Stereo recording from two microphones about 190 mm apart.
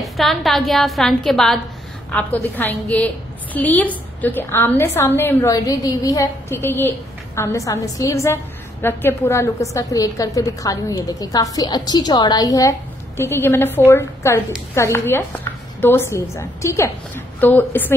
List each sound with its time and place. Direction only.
0.0 s a woman's voice: centre (ahead or behind)